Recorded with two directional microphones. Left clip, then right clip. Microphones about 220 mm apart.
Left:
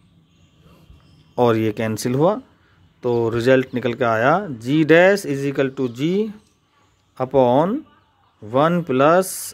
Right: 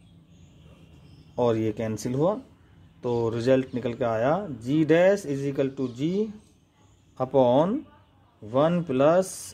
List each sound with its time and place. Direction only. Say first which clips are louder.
1.3 s speech: left 7 dB; 35° left (ahead or behind)